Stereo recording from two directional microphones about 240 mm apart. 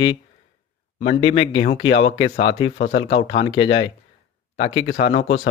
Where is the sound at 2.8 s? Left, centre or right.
Left.